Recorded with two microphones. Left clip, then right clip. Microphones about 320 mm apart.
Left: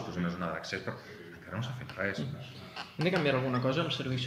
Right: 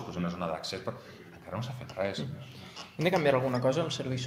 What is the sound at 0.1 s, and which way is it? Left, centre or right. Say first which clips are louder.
A man's voice: right 3 dB; centre.